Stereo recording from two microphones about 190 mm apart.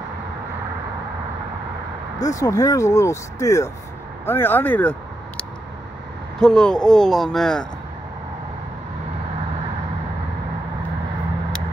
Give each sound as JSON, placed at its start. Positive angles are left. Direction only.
{"t": 2.2, "sound": "speech", "side_deg": 15}
{"t": 6.4, "sound": "speech", "side_deg": 5}